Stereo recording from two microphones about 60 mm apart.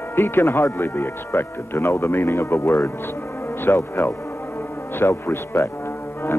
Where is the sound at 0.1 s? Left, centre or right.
Left.